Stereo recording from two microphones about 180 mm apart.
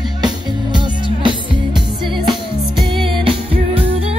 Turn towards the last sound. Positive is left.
turn(degrees=-30)  # may be behind; listen again after turning